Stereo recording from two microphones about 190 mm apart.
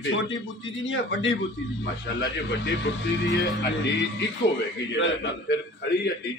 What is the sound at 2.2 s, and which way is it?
A man's voice, 65° left (ahead or behind).